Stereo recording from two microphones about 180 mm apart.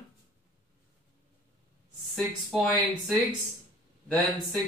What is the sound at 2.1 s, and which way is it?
Speech, centre (ahead or behind).